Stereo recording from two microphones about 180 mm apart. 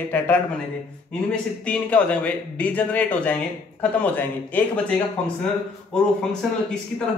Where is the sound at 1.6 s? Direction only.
5° left (ahead or behind).